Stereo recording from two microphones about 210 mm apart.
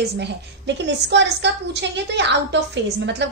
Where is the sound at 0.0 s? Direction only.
55° right (ahead or behind).